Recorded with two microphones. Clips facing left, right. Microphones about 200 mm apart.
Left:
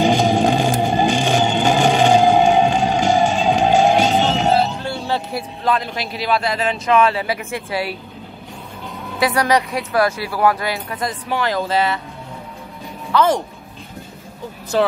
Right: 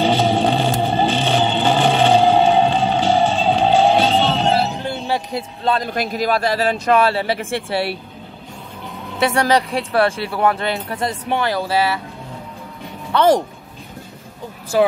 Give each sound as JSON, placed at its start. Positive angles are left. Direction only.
{"t": 0.0, "sound": "vehicle", "side_deg": 10}
{"t": 4.6, "sound": "music", "side_deg": -15}
{"t": 5.8, "sound": "speech", "side_deg": -45}
{"t": 9.2, "sound": "speech", "side_deg": -25}
{"t": 11.5, "sound": "speech", "side_deg": -10}
{"t": 13.1, "sound": "speech", "side_deg": -35}
{"t": 14.7, "sound": "speech", "side_deg": -10}